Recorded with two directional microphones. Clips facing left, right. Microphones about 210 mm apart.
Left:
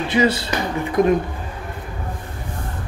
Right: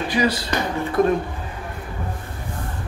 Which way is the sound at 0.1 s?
25° left (ahead or behind).